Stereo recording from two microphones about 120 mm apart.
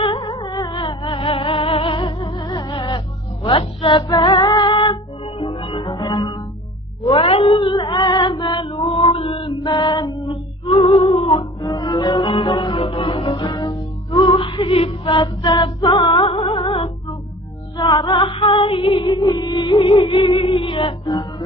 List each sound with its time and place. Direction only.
0.0 s music: 50° left (ahead or behind)
0.4 s music: 35° left (ahead or behind)
4.2 s female singing: 45° left (ahead or behind)
5.4 s music: 45° left (ahead or behind)
7.1 s female singing: 50° left (ahead or behind)
9.4 s female singing: 30° left (ahead or behind); by 11.4 s 50° left (ahead or behind)
11.6 s music: 40° left (ahead or behind); by 16.9 s 60° left (ahead or behind)
17.7 s music: 35° left (ahead or behind)